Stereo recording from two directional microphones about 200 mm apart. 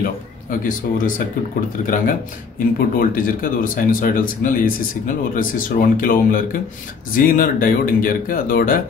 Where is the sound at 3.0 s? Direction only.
45° left (ahead or behind).